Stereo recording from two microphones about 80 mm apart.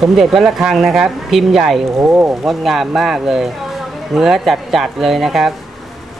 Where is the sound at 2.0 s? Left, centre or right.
Right.